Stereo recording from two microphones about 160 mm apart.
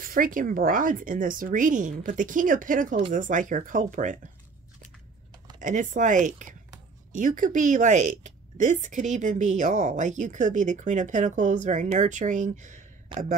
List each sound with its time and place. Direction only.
0.0 s speech: 60° right (ahead or behind)
5.6 s speech: 50° right (ahead or behind)
13.1 s a man's voice: 30° right (ahead or behind)